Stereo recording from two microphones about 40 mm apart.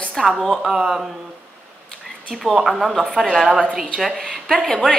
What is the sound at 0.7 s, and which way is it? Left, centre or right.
Speech, centre.